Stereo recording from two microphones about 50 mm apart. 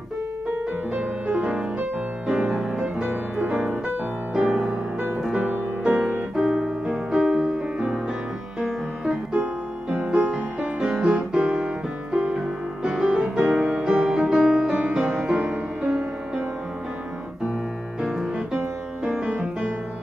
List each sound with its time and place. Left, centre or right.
0.9 s music: right
3.3 s music: right
5.9 s music: right
6.3 s keyboard: centre
7.1 s music: centre
9.8 s music: right
19.2 s music: right